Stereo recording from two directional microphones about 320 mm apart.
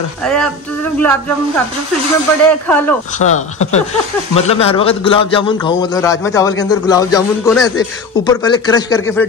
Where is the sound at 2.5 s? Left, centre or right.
Centre.